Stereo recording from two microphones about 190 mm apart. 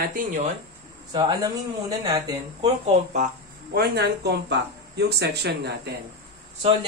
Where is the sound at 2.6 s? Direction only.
40° right (ahead or behind).